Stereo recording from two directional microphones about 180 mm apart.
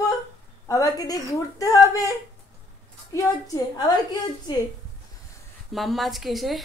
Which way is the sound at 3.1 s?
20° left (ahead or behind).